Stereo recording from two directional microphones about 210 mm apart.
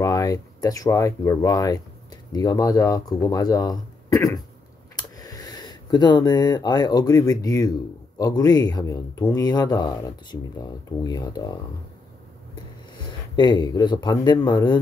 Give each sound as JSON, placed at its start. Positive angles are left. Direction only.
{"t": 0.0, "sound": "speech", "side_deg": 15}
{"t": 13.0, "sound": "speech", "side_deg": 20}